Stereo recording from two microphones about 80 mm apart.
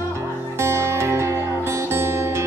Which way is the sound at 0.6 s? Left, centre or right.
Right.